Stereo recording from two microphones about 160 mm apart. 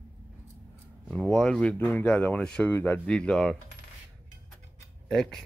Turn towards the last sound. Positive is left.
turn(degrees=0)  # may be behind; listen again after turning